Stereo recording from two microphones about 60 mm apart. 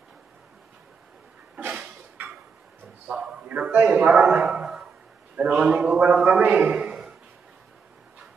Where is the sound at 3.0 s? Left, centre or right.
Centre.